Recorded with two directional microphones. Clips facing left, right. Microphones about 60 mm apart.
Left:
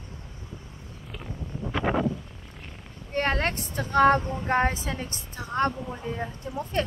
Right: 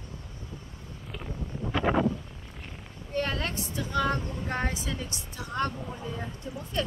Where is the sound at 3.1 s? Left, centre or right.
Left.